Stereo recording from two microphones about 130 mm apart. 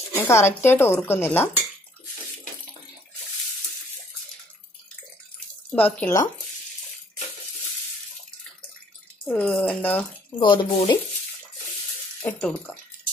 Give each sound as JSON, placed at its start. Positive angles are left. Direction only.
{"t": 0.1, "sound": "speech", "side_deg": 20}
{"t": 5.7, "sound": "speech", "side_deg": 10}
{"t": 9.2, "sound": "speech", "side_deg": 10}
{"t": 10.4, "sound": "speech", "side_deg": 40}
{"t": 12.4, "sound": "speech", "side_deg": 5}